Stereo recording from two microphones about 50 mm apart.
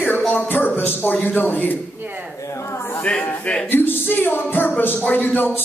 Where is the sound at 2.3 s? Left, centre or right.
Left.